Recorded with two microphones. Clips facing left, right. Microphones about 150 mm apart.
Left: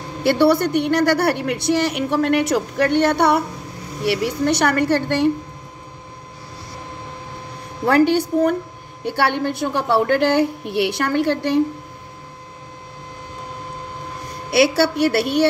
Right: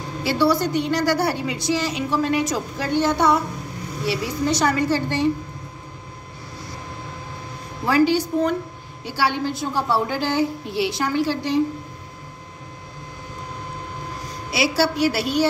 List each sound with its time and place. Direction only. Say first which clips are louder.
0.2 s a woman's voice: left 4 dB; 60° left (ahead or behind)
7.8 s a woman's voice: left 3 dB; 60° left (ahead or behind)
14.5 s a woman's voice: left 5 dB; 60° left (ahead or behind)